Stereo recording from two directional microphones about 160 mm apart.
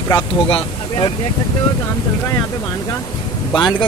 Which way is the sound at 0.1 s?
30° left (ahead or behind).